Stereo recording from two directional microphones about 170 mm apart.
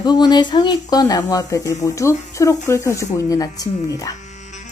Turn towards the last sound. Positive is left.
turn(degrees=20)  # may be behind; listen again after turning